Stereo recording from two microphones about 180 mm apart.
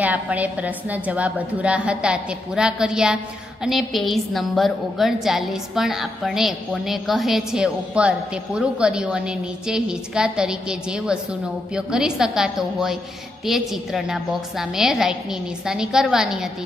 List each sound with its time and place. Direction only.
0.0 s a woman's voice: 10° right (ahead or behind)